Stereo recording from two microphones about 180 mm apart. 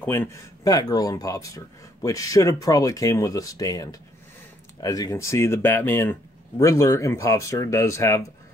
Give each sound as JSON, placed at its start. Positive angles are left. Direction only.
{"t": 0.0, "sound": "speech", "side_deg": 10}